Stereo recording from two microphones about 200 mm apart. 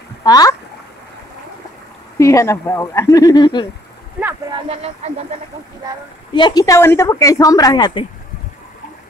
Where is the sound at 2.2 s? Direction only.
15° left (ahead or behind).